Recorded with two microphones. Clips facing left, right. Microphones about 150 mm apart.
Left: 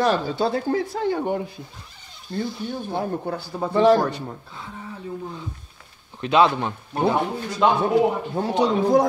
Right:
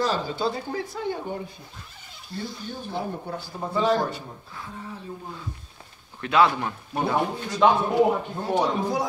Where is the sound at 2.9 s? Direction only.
70° left (ahead or behind).